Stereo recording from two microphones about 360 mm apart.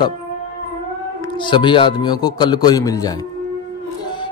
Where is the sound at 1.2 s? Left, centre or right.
Centre.